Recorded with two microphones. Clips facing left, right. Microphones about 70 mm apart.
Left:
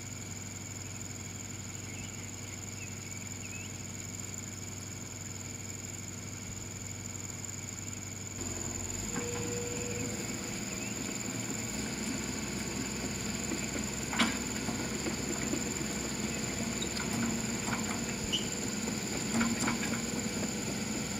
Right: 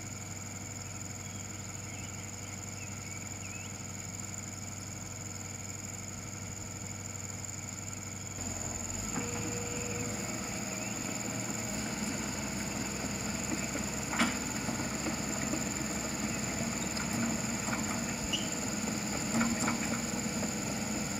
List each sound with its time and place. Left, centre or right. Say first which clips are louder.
9.1 s train: left 1 dB; centre
9.9 s vehicle: even; centre
18.4 s mouse: right 1 dB; centre
18.9 s vehicle: right 1 dB; centre
19.6 s vehicle: even; centre